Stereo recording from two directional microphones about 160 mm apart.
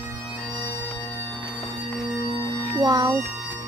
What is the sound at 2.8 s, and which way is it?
Speech, 25° right (ahead or behind).